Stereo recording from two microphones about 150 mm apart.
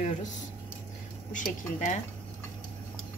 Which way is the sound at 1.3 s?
60° left (ahead or behind).